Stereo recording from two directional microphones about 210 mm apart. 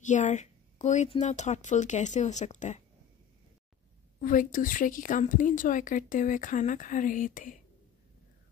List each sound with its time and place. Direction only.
0.0 s a woman's voice: 35° left (ahead or behind)
4.2 s a woman's voice: 40° left (ahead or behind)